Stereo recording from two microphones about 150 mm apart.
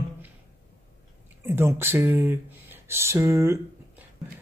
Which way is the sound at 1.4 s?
15° right (ahead or behind).